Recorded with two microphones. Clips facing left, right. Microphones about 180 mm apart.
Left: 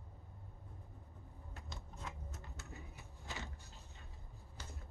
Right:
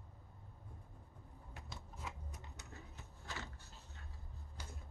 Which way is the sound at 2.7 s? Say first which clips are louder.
Left 2 dB; 10° left (ahead or behind).